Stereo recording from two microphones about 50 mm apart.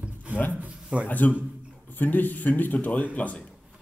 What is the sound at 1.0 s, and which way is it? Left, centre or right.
A man's voice, left.